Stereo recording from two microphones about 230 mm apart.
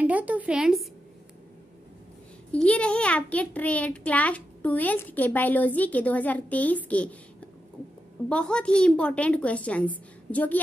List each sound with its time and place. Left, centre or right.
0.0 s a woman's voice: centre
2.5 s a child's voice: centre